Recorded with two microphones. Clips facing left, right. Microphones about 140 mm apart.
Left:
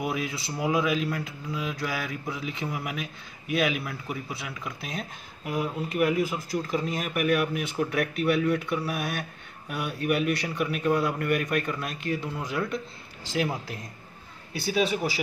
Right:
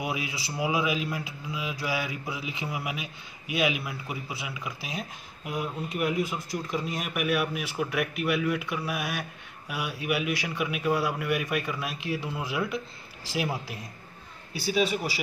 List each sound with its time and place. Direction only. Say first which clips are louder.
0.0 s a man's voice: left 2 dB; 5° right (ahead or behind)